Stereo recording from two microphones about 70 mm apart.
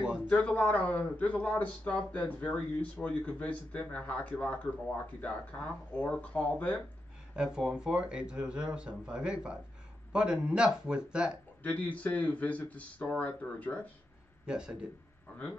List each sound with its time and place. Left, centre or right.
0.3 s a man's voice: left
7.3 s speech: centre
11.6 s a man's voice: left
14.4 s speech: centre